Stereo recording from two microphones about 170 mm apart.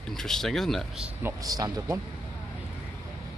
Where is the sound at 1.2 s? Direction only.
20° right (ahead or behind).